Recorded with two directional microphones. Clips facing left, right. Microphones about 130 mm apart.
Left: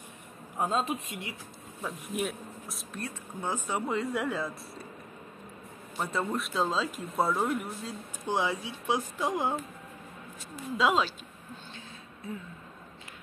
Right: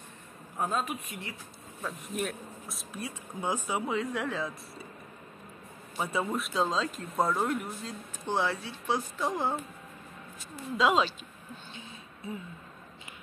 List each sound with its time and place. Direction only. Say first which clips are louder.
0.6 s a woman's voice: left 2 dB; 25° left (ahead or behind)
1.8 s speech: left 1 dB; 5° left (ahead or behind)
2.9 s speech: even; 10° right (ahead or behind); by 4.5 s 10° left (ahead or behind)
5.9 s speech: even; 5° right (ahead or behind)
8.3 s speech: even; 10° left (ahead or behind)
10.8 s speech: right 1 dB; centre (ahead or behind)